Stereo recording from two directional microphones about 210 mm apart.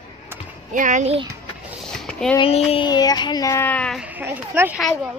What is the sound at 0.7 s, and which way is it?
Speech, 35° right (ahead or behind).